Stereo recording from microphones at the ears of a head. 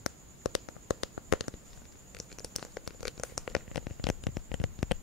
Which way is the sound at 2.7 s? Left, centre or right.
Left.